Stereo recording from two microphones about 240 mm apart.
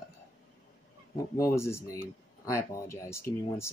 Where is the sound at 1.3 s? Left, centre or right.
Centre.